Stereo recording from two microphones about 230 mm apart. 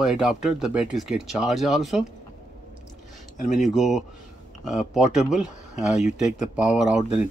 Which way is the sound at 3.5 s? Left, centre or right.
Centre.